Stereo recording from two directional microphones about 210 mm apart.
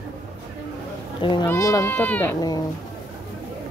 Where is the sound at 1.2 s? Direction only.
20° left (ahead or behind); by 2.3 s 5° left (ahead or behind).